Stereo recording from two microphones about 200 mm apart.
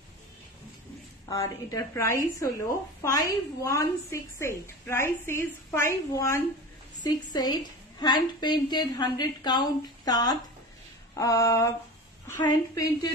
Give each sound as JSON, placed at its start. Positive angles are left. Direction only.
{"t": 1.3, "sound": "a woman's voice", "side_deg": 15}